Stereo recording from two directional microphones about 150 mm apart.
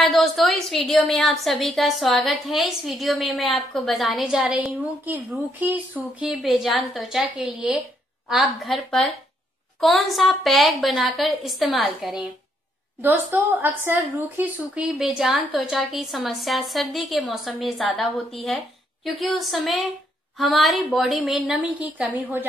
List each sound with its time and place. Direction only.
0.0 s a woman's voice: centre (ahead or behind)
13.0 s a woman's voice: 10° right (ahead or behind)